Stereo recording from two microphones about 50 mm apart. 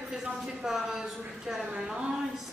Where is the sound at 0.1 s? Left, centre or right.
Centre.